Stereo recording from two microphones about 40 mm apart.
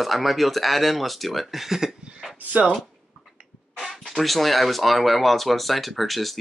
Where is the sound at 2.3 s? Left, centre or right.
Right.